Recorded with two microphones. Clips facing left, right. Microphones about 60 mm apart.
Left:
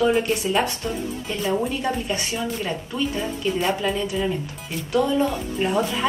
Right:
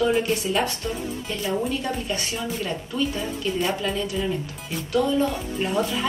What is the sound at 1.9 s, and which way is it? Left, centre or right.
Speech, left.